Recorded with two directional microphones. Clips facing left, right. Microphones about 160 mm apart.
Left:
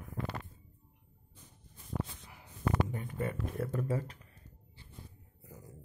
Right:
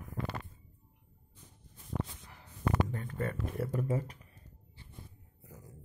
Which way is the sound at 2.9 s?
15° left (ahead or behind).